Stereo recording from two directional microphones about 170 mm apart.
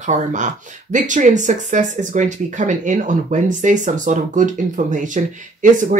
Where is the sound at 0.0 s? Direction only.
45° right (ahead or behind).